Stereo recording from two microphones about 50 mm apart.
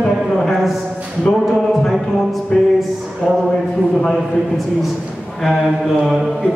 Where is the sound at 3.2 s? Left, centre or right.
Centre.